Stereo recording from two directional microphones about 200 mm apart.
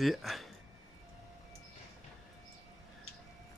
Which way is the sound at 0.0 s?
Centre (ahead or behind).